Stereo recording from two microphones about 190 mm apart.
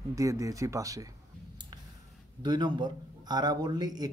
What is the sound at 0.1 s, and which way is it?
Speech, 15° right (ahead or behind).